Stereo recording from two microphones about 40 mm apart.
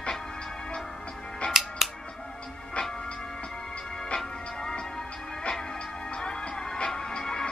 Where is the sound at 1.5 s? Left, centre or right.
Centre.